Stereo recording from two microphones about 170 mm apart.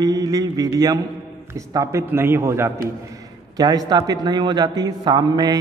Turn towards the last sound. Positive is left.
turn(degrees=-25)  # may be behind; listen again after turning